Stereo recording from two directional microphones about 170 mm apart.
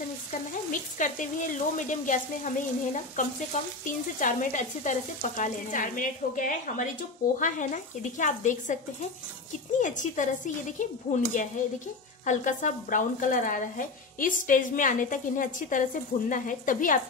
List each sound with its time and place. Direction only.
0.7 s speech: 50° left (ahead or behind)
9.8 s speech: 50° left (ahead or behind)